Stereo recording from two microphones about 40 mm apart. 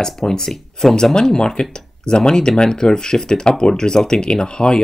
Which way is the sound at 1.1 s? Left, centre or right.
Centre.